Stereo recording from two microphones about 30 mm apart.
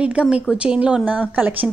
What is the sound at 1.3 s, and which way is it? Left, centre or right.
Speech, right.